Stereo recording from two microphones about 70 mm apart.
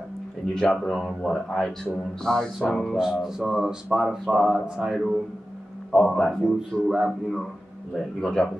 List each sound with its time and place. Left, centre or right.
0.6 s a man's voice: centre
3.0 s speech: centre
5.9 s a man's voice: centre